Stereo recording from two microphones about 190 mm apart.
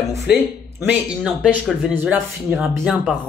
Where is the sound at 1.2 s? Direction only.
Centre (ahead or behind).